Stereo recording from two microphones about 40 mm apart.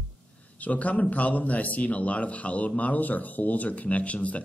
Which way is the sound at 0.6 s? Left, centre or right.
Left.